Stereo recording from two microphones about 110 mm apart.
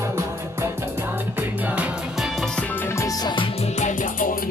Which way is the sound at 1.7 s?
10° right (ahead or behind).